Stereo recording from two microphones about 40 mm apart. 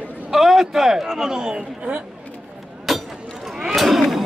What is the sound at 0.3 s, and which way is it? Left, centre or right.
A man's voice, centre.